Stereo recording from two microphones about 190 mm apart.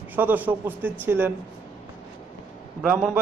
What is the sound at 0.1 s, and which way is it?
A man's voice, 10° right (ahead or behind).